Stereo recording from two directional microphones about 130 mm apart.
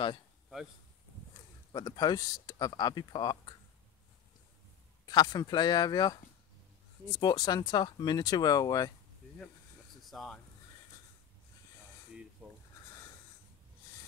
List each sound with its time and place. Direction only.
1.7 s speech: 30° left (ahead or behind)
5.0 s speech: 30° left (ahead or behind)
10.0 s speech: centre (ahead or behind)
12.4 s a sound: 10° right (ahead or behind)